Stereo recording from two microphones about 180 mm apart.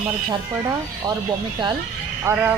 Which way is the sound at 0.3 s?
20° right (ahead or behind).